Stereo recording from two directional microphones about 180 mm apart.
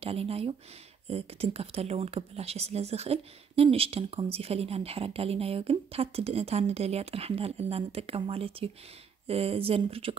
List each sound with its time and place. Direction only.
0.0 s speech: 30° right (ahead or behind)